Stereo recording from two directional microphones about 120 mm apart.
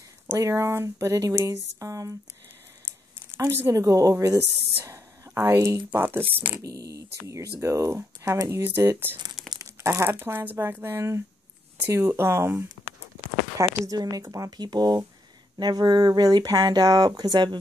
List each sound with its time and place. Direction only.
0.3 s speech: 25° right (ahead or behind)
3.3 s speech: 20° right (ahead or behind)
6.6 s speech: 30° right (ahead or behind)
13.6 s speech: 30° right (ahead or behind)